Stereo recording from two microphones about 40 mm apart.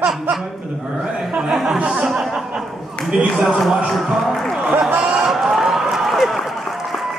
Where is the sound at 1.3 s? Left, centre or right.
Centre.